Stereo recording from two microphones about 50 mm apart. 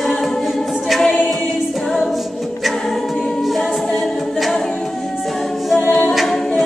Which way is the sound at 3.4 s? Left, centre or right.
Centre.